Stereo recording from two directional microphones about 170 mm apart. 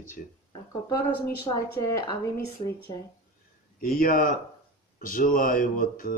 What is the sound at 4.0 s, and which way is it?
Speech, 55° left (ahead or behind).